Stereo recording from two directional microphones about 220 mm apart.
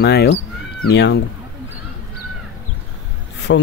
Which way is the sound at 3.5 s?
60° left (ahead or behind).